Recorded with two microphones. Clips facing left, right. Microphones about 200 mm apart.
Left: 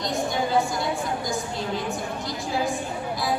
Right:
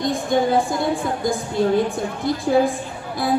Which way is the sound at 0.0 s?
55° right (ahead or behind).